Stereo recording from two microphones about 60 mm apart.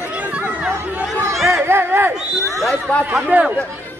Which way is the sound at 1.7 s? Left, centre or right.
Right.